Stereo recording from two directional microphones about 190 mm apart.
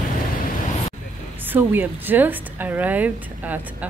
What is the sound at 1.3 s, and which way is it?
A woman's voice, 10° right (ahead or behind).